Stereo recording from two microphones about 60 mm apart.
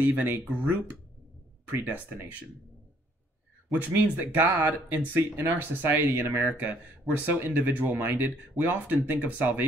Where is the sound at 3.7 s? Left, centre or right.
Right.